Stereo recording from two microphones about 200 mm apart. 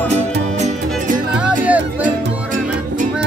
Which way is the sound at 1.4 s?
5° right (ahead or behind).